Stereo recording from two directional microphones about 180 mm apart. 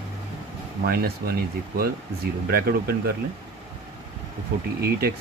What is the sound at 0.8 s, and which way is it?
Speech, 60° right (ahead or behind).